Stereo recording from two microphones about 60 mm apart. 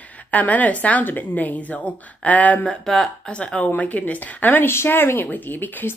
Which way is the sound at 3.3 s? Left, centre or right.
Centre.